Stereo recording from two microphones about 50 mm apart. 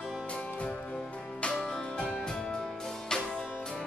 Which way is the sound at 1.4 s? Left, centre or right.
Centre.